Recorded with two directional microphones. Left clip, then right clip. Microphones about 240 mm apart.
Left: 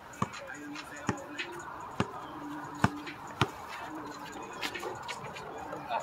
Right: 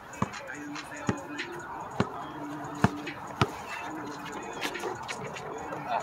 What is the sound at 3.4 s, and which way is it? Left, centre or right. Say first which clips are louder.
Chop: right 3 dB; centre.